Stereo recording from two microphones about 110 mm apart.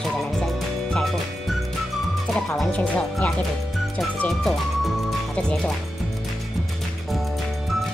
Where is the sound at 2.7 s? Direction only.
15° left (ahead or behind).